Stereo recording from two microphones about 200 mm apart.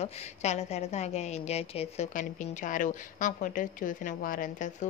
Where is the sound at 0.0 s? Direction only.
35° left (ahead or behind).